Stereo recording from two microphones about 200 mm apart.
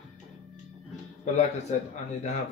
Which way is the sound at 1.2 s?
35° left (ahead or behind).